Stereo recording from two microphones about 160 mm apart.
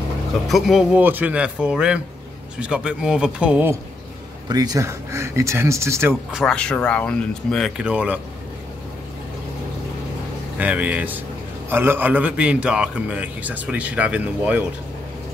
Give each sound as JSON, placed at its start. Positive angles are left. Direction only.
{"t": 0.5, "sound": "a man's voice", "side_deg": 0}
{"t": 4.5, "sound": "a man's voice", "side_deg": -25}
{"t": 6.3, "sound": "speech", "side_deg": 5}
{"t": 10.6, "sound": "a man's voice", "side_deg": -10}